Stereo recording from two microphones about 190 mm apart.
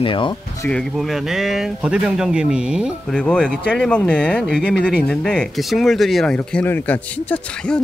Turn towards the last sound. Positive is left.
turn(degrees=5)  # may be behind; listen again after turning